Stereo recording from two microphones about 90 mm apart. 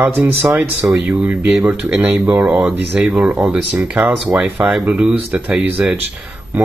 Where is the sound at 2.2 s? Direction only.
20° right (ahead or behind).